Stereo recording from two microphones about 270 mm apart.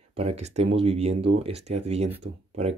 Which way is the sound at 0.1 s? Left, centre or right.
Right.